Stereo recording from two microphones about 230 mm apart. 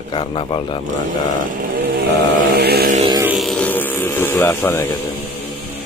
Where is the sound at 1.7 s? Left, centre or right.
Right.